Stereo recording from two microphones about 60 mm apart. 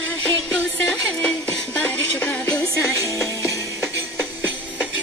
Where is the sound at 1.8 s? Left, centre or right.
Left.